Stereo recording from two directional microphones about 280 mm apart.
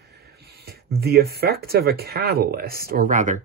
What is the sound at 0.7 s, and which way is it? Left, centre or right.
Speech, right.